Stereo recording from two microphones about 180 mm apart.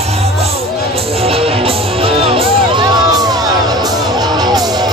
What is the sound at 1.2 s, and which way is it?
Music, 30° right (ahead or behind).